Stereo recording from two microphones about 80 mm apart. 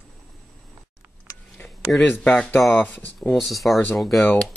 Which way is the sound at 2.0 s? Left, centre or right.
Centre.